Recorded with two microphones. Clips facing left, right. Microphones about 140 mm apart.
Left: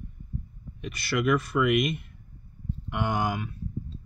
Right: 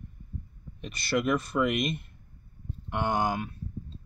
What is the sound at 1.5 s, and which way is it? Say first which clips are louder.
Speech: left 3 dB; 35° right (ahead or behind).